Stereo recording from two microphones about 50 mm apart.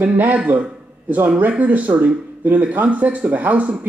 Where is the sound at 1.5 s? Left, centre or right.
Right.